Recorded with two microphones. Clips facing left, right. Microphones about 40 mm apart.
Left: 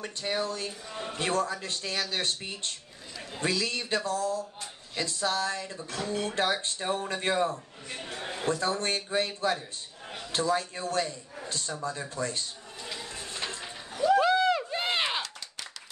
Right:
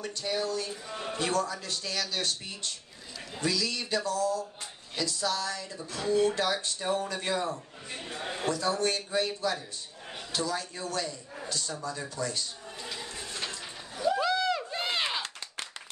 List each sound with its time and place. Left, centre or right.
0.0 s speech: left
10.3 s speech: left
13.2 s a sound: left